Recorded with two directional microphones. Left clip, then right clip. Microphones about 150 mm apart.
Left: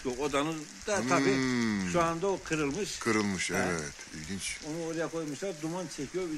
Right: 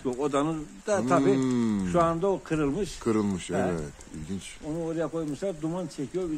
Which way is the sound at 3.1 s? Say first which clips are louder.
Right 1 dB; 10° right (ahead or behind).